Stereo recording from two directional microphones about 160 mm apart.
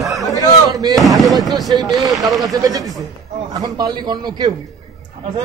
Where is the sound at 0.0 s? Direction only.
Centre (ahead or behind).